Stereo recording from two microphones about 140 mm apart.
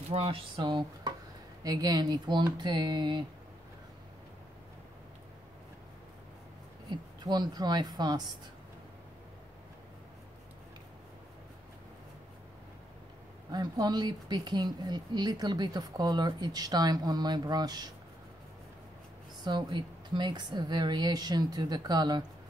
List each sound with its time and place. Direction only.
0.1 s speech: 40° right (ahead or behind)
6.9 s speech: 30° right (ahead or behind)
13.5 s speech: 30° right (ahead or behind)
19.4 s speech: 30° right (ahead or behind)